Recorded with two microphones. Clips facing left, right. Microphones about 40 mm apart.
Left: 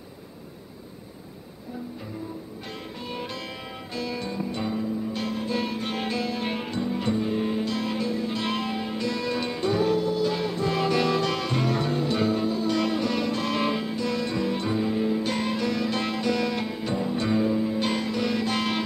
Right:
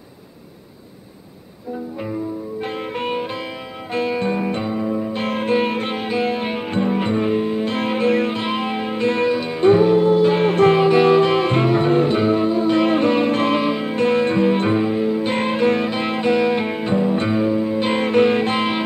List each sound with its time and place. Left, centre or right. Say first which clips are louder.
3.9 s music: right 11 dB; right
5.5 s music: right 12 dB; right
6.1 s music: right 8 dB; right
6.7 s music: right 9 dB; right
8.3 s music: right 6 dB; right
9.3 s music: right 7 dB; centre
9.6 s music: right 12 dB; right
10.8 s music: right 10 dB; right
13.6 s music: right 6 dB; centre
13.8 s music: right 10 dB; right
15.0 s music: right 6 dB; right
15.3 s music: right 9 dB; right
17.9 s music: right 11 dB; right